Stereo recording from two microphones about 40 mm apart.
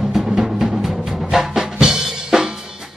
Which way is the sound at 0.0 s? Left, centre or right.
Centre.